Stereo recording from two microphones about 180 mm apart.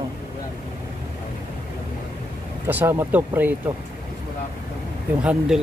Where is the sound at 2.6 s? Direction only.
15° right (ahead or behind).